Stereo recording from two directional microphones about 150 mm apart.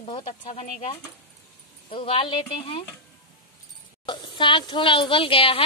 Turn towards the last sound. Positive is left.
turn(degrees=35)  # may be behind; listen again after turning